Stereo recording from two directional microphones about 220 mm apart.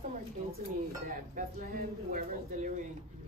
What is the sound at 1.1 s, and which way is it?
Speech, 40° right (ahead or behind).